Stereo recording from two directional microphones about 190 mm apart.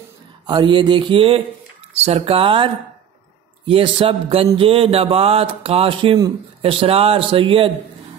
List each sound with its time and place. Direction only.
0.5 s speech: 25° right (ahead or behind)